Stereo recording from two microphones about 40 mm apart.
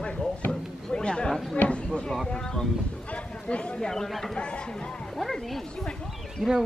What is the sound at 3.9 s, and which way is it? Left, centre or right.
Speech, centre.